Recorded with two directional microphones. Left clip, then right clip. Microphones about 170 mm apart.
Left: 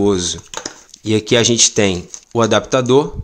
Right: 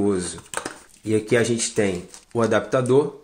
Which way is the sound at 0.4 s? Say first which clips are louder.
Left 3 dB; 10° left (ahead or behind).